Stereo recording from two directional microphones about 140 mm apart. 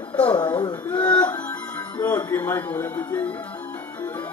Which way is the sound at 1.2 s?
10° left (ahead or behind).